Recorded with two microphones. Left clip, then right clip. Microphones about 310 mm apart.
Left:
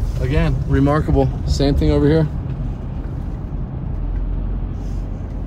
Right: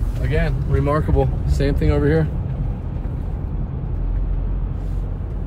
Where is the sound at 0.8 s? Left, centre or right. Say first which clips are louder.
Left 2 dB; left.